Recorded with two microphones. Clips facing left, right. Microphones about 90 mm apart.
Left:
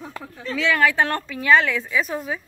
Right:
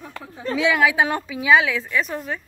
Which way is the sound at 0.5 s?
15° right (ahead or behind).